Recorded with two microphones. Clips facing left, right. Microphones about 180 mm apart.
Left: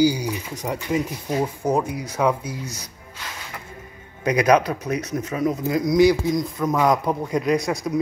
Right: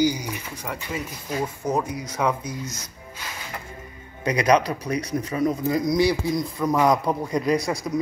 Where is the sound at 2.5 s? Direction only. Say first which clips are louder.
Left 1 dB; 35° left (ahead or behind).